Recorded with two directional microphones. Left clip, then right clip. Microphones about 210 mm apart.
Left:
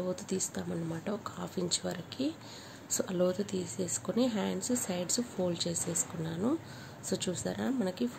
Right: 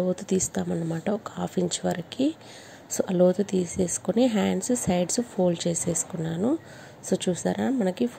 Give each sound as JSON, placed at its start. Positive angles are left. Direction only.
{"t": 0.1, "sound": "speech", "side_deg": -30}